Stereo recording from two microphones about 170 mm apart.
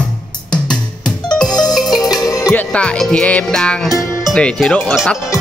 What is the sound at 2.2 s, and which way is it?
Music, 20° left (ahead or behind).